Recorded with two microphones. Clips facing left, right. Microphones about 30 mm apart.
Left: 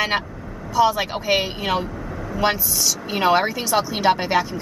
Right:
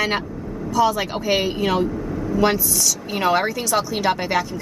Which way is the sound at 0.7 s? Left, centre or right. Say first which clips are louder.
Left 1 dB; centre.